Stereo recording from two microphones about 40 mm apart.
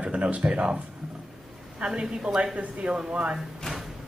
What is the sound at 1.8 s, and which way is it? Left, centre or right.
Speech, right.